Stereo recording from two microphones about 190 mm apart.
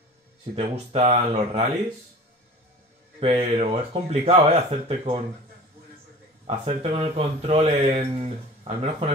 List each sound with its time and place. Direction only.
0.6 s speech: 30° right (ahead or behind)
3.2 s speech: 30° right (ahead or behind)
6.4 s speech: 35° right (ahead or behind)